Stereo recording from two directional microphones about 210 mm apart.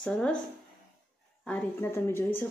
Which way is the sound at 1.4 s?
10° left (ahead or behind).